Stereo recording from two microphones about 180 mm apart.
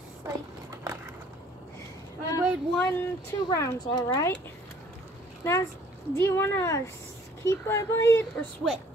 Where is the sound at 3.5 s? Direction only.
20° left (ahead or behind).